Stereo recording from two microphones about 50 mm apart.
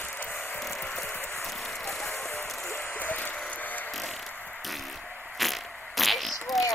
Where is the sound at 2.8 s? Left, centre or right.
Left.